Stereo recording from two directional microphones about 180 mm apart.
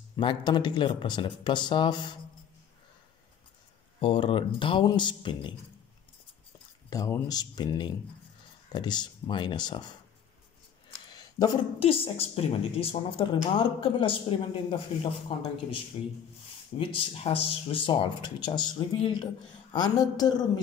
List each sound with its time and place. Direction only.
0.1 s speech: 25° left (ahead or behind)
4.0 s speech: 30° left (ahead or behind)
6.9 s speech: 20° left (ahead or behind)
10.9 s a sound: 20° left (ahead or behind)
11.8 s a woman's voice: 30° left (ahead or behind)